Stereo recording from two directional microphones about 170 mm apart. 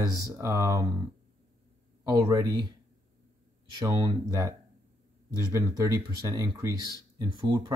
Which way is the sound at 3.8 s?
20° right (ahead or behind).